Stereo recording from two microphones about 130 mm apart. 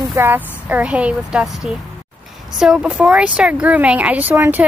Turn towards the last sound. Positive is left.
turn(degrees=-15)  # may be behind; listen again after turning